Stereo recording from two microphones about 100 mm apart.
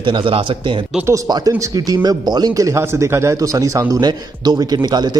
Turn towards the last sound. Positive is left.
turn(degrees=-45)  # may be behind; listen again after turning